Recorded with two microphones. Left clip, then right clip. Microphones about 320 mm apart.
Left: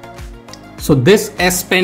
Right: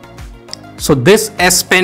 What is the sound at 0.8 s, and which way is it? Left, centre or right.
Speech, right.